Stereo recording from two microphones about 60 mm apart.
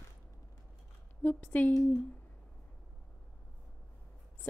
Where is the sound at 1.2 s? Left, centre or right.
Left.